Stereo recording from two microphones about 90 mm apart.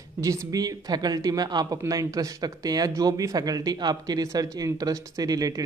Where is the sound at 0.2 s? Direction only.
40° right (ahead or behind).